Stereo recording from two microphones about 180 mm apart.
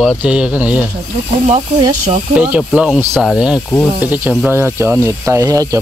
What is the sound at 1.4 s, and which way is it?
Speech, 35° right (ahead or behind).